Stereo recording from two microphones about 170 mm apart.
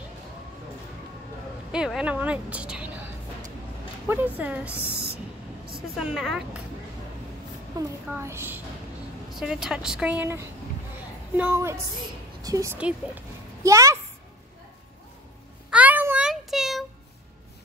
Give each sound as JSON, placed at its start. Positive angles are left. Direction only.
{"t": 1.7, "sound": "a woman's voice", "side_deg": -5}
{"t": 4.1, "sound": "a woman's voice", "side_deg": -10}
{"t": 4.7, "sound": "speech", "side_deg": 15}
{"t": 5.9, "sound": "speech", "side_deg": 0}
{"t": 7.8, "sound": "a child's voice", "side_deg": -20}
{"t": 9.3, "sound": "a woman's voice", "side_deg": -5}
{"t": 12.7, "sound": "a woman's voice", "side_deg": -5}
{"t": 13.7, "sound": "a child's voice", "side_deg": -20}
{"t": 15.7, "sound": "a sound", "side_deg": -10}